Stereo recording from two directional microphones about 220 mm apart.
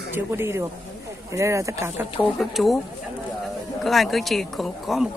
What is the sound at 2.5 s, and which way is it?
Speech, centre (ahead or behind).